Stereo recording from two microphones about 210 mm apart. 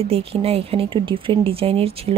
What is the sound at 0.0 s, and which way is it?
A woman's voice, 25° right (ahead or behind).